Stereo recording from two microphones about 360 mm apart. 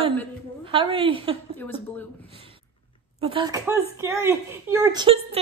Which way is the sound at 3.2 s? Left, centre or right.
Centre.